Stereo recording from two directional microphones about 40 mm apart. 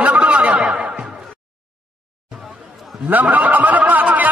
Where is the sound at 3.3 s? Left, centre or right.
Right.